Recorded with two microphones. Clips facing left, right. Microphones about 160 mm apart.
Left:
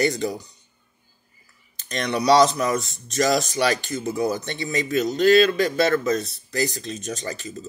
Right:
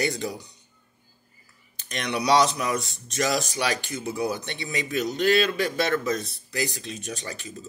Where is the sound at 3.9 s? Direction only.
45° left (ahead or behind).